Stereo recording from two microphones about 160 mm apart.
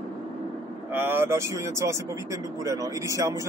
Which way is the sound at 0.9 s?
15° right (ahead or behind).